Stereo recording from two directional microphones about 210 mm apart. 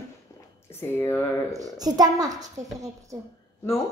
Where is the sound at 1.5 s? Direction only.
15° right (ahead or behind).